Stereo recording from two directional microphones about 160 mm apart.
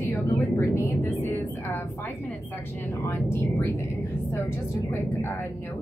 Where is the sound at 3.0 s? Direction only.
15° left (ahead or behind).